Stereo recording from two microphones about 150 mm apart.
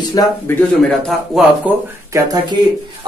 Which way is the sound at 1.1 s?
Centre (ahead or behind).